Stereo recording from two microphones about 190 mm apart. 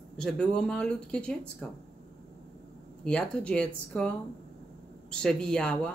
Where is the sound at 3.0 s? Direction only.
5° left (ahead or behind).